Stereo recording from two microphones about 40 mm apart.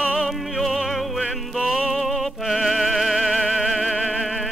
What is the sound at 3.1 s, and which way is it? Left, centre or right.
Opera, centre.